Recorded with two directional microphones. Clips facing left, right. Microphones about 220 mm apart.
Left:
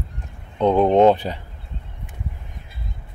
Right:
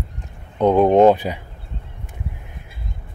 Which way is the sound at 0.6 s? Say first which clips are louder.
Right 2 dB; 10° right (ahead or behind).